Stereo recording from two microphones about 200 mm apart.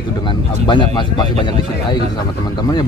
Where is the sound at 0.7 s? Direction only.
25° left (ahead or behind).